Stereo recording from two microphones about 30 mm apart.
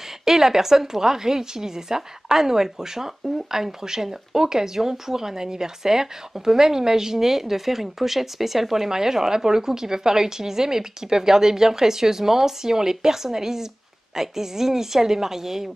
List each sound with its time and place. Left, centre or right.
0.2 s a woman's voice: centre